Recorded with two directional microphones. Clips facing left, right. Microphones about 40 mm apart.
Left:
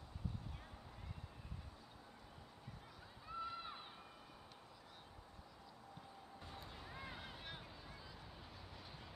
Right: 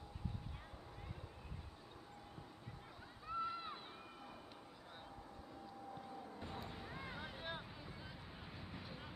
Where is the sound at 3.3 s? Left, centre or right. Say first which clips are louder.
Right 4 dB; centre.